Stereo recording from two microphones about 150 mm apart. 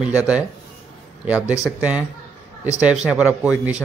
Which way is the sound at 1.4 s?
20° left (ahead or behind).